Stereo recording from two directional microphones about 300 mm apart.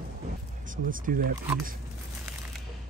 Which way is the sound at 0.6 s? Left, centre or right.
Right.